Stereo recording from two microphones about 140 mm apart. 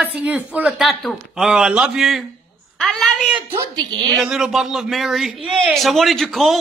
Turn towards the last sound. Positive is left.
turn(degrees=0)  # may be behind; listen again after turning